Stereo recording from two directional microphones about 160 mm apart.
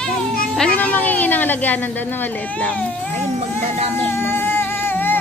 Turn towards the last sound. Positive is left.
turn(degrees=15)  # may be behind; listen again after turning